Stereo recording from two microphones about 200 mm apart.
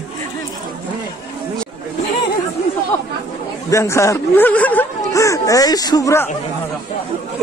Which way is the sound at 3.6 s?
15° left (ahead or behind).